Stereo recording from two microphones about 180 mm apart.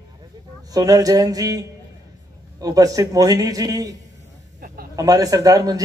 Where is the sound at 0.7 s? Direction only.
20° right (ahead or behind).